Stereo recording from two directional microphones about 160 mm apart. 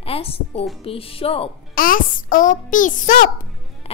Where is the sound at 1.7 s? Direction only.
60° left (ahead or behind).